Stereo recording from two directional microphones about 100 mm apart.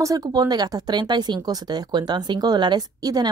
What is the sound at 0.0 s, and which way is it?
Speech, 35° right (ahead or behind).